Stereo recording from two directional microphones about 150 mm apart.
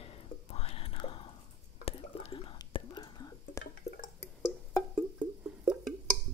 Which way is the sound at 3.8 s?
90° left.